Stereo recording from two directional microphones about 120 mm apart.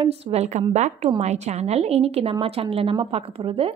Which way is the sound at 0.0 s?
60° right (ahead or behind).